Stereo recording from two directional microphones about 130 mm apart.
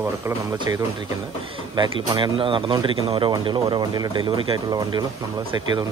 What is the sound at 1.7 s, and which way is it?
Speech, 35° right (ahead or behind).